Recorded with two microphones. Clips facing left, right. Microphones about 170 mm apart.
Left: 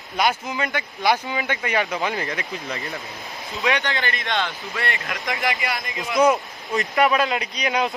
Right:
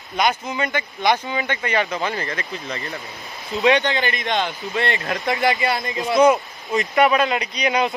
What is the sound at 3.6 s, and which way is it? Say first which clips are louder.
Speech: right 6 dB; 20° right (ahead or behind).